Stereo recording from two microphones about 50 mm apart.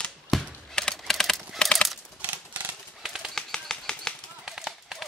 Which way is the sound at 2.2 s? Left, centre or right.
Right.